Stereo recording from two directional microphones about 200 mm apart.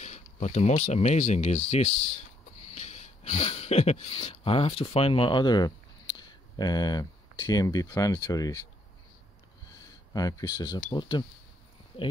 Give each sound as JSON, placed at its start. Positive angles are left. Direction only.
{"t": 0.0, "sound": "speech", "side_deg": 35}
{"t": 10.1, "sound": "speech", "side_deg": 20}